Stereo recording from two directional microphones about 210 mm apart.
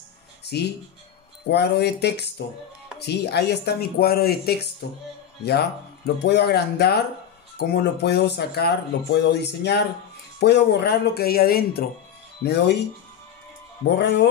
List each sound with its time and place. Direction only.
0.5 s speech: 50° left (ahead or behind)
13.9 s speech: 50° left (ahead or behind)